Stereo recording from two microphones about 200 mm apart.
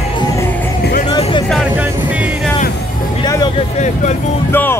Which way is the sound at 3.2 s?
20° left (ahead or behind).